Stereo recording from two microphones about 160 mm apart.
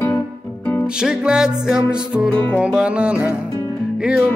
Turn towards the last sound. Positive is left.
turn(degrees=-5)  # may be behind; listen again after turning